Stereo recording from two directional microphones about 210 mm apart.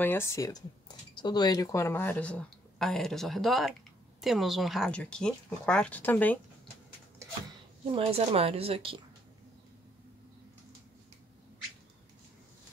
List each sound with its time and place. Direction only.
0.0 s speech: 10° left (ahead or behind)
7.9 s a woman's voice: 30° right (ahead or behind)